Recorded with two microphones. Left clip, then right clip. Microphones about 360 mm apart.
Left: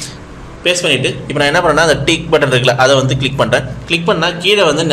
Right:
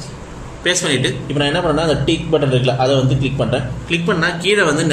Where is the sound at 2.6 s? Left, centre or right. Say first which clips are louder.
Left 6 dB; centre.